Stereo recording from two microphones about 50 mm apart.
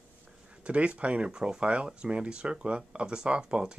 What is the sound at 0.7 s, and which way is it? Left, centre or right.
Speech, right.